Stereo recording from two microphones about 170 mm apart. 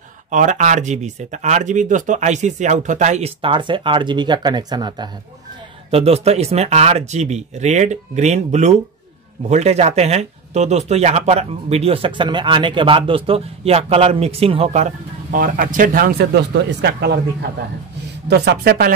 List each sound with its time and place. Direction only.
0.3 s speech: 45° right (ahead or behind); by 5.1 s 25° right (ahead or behind)
5.9 s speech: 35° right (ahead or behind)
15.3 s speech: 55° right (ahead or behind)